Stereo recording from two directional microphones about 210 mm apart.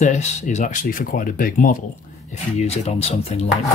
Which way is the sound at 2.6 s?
30° left (ahead or behind).